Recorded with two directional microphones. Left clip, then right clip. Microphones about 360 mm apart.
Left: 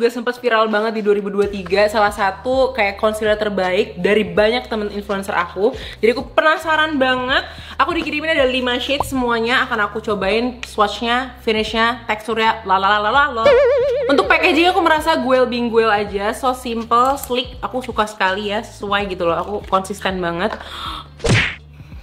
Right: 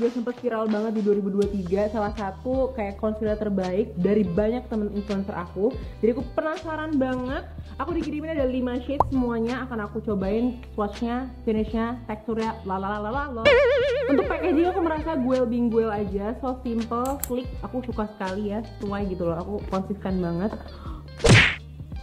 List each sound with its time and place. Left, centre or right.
0.2 s a woman's voice: centre
2.4 s a woman's voice: centre
2.7 s a woman's voice: centre